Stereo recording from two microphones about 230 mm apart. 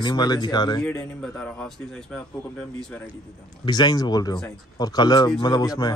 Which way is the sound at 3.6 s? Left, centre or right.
Centre.